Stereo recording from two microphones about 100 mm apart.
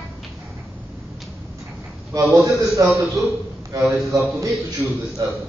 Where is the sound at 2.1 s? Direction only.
35° right (ahead or behind).